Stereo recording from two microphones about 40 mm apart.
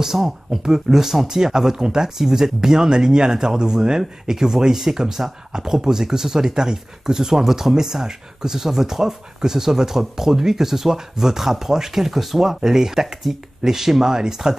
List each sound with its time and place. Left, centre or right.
0.0 s speech: centre